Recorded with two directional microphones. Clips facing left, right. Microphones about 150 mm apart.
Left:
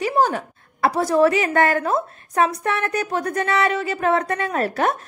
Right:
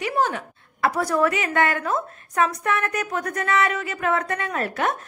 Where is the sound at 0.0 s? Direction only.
35° left (ahead or behind).